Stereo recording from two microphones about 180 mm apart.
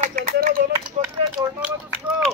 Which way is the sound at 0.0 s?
50° right (ahead or behind).